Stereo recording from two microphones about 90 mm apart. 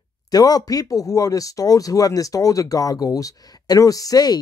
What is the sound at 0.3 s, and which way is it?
Speech, 45° left (ahead or behind).